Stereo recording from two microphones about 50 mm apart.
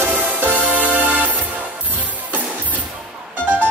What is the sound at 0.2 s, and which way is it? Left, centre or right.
Music, right.